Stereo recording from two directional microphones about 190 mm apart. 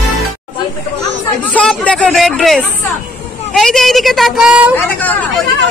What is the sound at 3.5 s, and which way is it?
A woman's voice, centre (ahead or behind).